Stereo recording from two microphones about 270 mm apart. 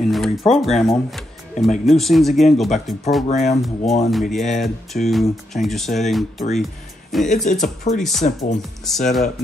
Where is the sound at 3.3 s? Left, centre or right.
Left.